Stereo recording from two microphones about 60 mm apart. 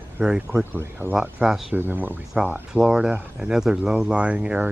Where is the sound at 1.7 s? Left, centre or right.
Right.